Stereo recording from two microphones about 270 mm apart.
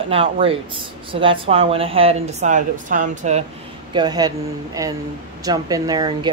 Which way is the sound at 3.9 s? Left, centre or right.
Centre.